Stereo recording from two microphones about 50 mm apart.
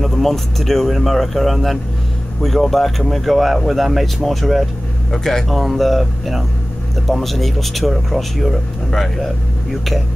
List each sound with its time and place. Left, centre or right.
0.0 s speech: centre